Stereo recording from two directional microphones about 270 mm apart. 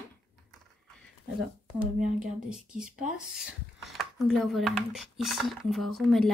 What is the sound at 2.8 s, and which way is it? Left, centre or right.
Speech, right.